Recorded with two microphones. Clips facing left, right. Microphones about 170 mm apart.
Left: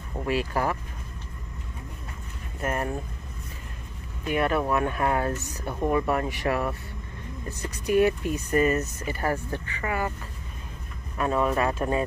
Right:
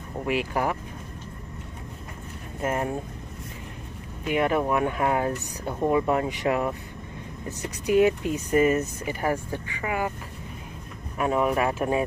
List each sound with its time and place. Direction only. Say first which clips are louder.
0.2 s speech: even; 15° right (ahead or behind)
2.6 s speech: right 2 dB; 20° right (ahead or behind)
4.2 s speech: right 1 dB; 15° right (ahead or behind)
11.1 s speech: right 1 dB; 15° right (ahead or behind)